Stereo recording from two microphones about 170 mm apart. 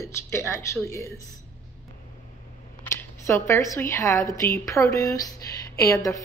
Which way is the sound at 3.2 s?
15° left (ahead or behind).